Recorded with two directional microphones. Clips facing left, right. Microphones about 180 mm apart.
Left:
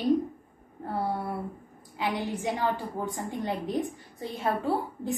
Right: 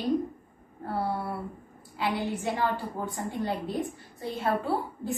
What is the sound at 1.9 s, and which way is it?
A woman's voice, 15° left (ahead or behind).